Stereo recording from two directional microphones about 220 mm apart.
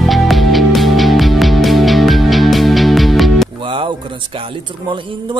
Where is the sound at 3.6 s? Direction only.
25° right (ahead or behind).